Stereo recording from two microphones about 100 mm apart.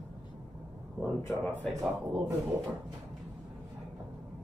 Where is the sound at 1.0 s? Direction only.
15° left (ahead or behind).